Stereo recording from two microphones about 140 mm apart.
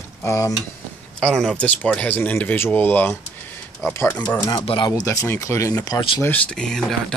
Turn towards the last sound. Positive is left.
turn(degrees=5)  # may be behind; listen again after turning